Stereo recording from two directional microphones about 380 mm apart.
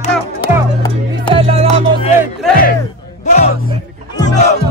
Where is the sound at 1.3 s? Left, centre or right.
Centre.